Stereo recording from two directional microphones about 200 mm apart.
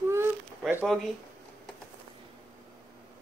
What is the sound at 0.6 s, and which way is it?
Speech, 10° right (ahead or behind).